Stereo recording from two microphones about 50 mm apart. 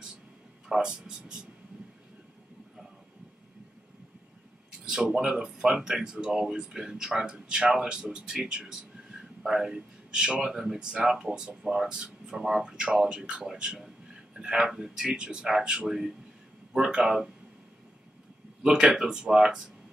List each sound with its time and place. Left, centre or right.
0.7 s speech: centre
4.8 s speech: centre
18.6 s speech: centre